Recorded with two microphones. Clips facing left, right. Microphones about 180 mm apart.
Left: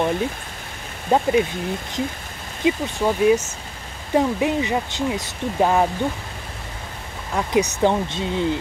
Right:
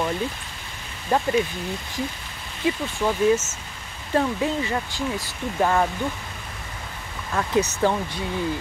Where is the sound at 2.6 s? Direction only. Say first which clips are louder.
Left 3 dB; 15° left (ahead or behind).